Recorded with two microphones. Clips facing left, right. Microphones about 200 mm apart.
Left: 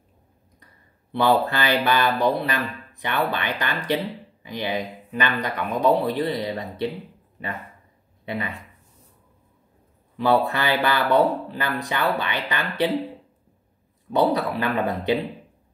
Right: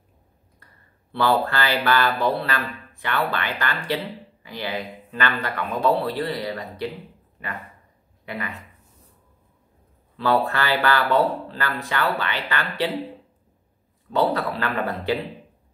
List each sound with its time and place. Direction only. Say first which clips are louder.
1.1 s speech: left 1 dB; 15° left (ahead or behind)
8.3 s speech: left 3 dB; 20° left (ahead or behind)
10.1 s speech: left 1 dB; 15° left (ahead or behind)
14.6 s speech: left 2 dB; 20° left (ahead or behind)